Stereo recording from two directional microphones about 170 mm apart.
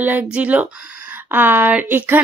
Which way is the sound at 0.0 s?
10° right (ahead or behind).